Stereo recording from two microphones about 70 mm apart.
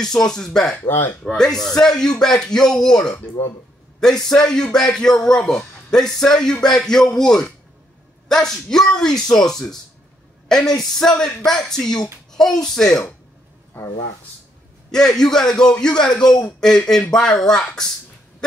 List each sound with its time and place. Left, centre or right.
0.0 s speech: centre
0.8 s speech: left
1.2 s speech: centre
10.8 s speech: centre
13.7 s speech: left
14.9 s speech: centre